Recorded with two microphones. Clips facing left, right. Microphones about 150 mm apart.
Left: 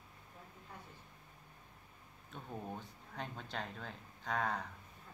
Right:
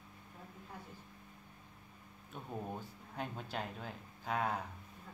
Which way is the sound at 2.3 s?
5° right (ahead or behind).